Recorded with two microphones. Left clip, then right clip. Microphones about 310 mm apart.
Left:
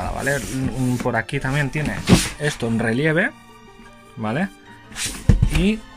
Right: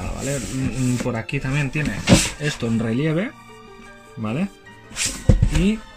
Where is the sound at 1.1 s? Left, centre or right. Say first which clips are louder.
Left 4 dB; left.